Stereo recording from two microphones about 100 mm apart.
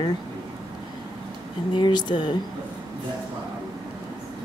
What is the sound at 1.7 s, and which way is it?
Speech, 50° left (ahead or behind).